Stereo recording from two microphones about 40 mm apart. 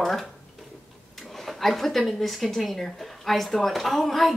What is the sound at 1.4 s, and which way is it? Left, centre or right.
A woman's voice, centre.